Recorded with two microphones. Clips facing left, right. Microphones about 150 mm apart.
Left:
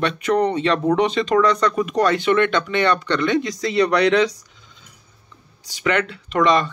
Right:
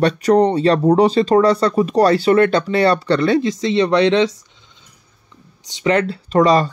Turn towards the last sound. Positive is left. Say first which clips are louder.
# right 4 dB
turn(degrees=-35)  # may be behind; listen again after turning